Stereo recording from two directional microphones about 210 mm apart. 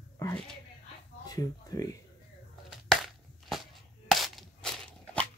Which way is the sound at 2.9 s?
Centre (ahead or behind).